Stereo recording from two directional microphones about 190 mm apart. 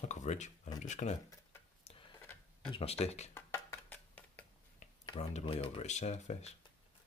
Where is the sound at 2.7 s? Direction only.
30° left (ahead or behind).